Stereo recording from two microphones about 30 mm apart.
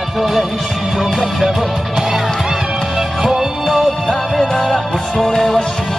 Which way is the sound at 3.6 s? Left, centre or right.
Centre.